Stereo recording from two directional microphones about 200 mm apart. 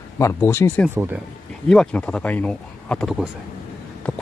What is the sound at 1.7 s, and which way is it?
Speech, 5° left (ahead or behind).